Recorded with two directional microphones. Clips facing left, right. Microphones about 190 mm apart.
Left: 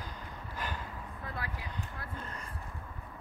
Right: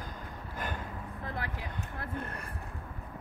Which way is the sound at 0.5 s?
50° right (ahead or behind).